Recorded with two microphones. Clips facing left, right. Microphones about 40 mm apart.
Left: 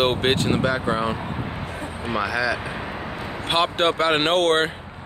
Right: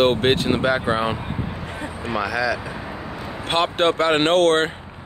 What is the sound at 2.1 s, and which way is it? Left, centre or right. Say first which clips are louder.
Speech: right 1 dB; centre.